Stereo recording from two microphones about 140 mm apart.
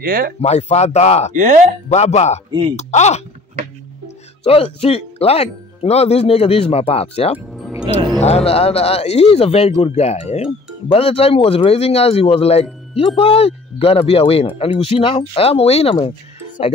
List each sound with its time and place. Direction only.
0.0 s speech: 90° right
0.4 s speech: 50° left (ahead or behind)
1.3 s speech: 65° right (ahead or behind)
1.9 s speech: 55° left (ahead or behind)
4.5 s speech: 45° left (ahead or behind)